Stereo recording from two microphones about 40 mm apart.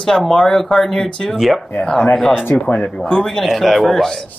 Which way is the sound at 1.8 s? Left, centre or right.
Centre.